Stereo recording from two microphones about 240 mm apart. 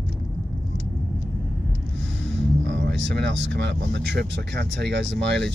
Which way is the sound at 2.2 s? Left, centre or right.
Right.